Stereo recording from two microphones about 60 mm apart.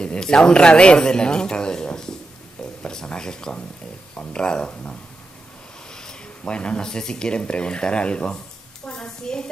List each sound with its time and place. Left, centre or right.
0.0 s speech: centre
5.9 s speech: centre
8.8 s a sound: centre